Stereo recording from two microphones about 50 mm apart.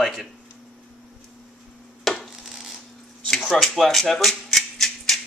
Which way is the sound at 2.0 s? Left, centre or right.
Centre.